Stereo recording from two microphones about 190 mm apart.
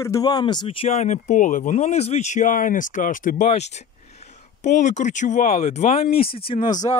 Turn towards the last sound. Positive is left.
turn(degrees=20)  # may be behind; listen again after turning